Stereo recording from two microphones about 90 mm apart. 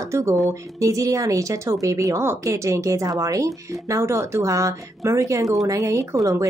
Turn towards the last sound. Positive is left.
turn(degrees=-35)  # may be behind; listen again after turning